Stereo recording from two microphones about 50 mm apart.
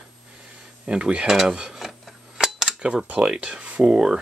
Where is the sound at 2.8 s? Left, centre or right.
Right.